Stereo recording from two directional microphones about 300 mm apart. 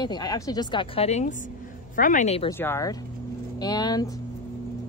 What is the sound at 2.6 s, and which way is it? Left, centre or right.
Speech, centre.